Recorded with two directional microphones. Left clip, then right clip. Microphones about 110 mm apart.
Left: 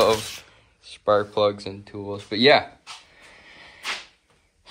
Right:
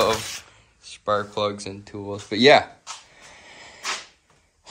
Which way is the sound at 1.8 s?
35° right (ahead or behind).